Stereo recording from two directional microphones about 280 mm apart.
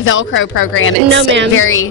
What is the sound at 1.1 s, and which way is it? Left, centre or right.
Speech, right.